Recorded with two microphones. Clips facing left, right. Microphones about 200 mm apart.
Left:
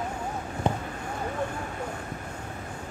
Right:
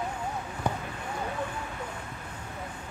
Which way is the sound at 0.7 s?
25° left (ahead or behind).